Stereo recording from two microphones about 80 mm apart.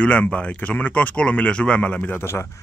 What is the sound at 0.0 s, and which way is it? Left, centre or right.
Speech, centre.